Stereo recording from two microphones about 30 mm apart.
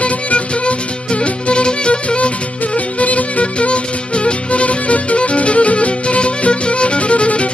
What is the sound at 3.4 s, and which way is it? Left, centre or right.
Music, left.